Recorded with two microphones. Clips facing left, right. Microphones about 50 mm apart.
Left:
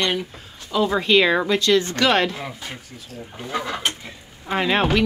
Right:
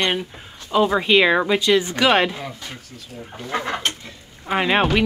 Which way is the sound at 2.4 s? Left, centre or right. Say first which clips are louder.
Even; centre.